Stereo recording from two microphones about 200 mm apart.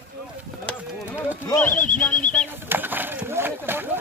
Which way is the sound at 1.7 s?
40° left (ahead or behind).